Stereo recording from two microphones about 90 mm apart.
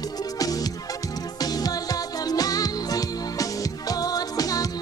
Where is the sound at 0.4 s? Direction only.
45° left (ahead or behind).